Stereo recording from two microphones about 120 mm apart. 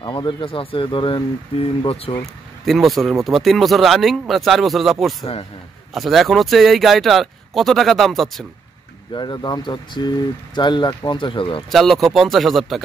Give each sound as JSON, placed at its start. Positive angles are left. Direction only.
{"t": 0.0, "sound": "speech", "side_deg": 40}
{"t": 2.6, "sound": "speech", "side_deg": 0}
{"t": 9.1, "sound": "speech", "side_deg": 40}
{"t": 11.7, "sound": "speech", "side_deg": 0}